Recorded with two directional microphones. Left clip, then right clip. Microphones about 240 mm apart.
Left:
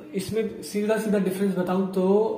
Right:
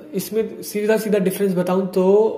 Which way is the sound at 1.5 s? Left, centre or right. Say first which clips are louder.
Right 6 dB; right.